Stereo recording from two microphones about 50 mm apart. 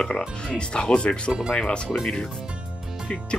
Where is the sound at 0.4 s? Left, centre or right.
Centre.